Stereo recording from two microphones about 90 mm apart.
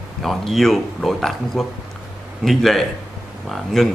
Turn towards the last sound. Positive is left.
turn(degrees=0)  # may be behind; listen again after turning